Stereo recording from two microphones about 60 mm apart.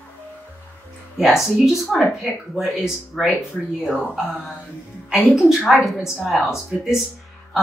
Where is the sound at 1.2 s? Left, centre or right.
Centre.